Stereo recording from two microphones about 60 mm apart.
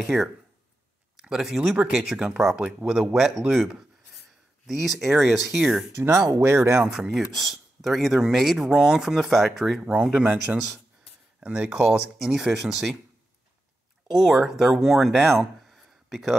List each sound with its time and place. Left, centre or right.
0.0 s speech: centre
4.6 s speech: centre
6.4 s speech: right
6.8 s speech: centre
7.1 s speech: centre
9.8 s speech: centre
11.3 s speech: centre
14.0 s speech: centre
15.6 s a sound: centre